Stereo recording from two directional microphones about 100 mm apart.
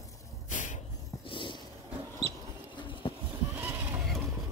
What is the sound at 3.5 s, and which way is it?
Neigh, 25° right (ahead or behind).